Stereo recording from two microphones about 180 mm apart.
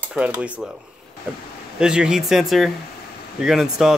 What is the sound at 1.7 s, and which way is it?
Speech, 5° right (ahead or behind).